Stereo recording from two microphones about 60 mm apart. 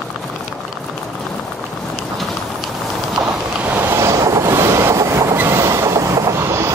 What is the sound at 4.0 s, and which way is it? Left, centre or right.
Train, right.